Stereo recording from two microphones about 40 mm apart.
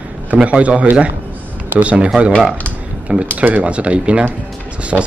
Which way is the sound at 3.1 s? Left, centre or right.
Right.